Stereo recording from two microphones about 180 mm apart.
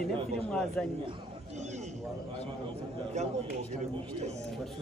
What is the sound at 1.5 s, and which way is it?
Speech, 40° right (ahead or behind).